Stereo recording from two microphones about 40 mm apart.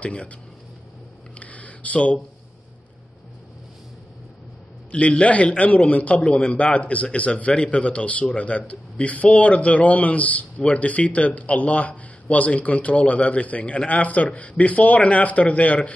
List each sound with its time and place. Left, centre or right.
0.0 s a man's voice: left
1.4 s a sound: left
4.9 s a man's voice: left
6.2 s a man's voice: left
6.5 s a man's voice: left